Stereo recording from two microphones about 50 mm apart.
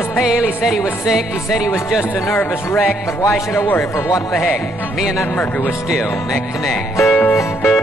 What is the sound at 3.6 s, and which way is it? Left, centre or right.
Speech, left.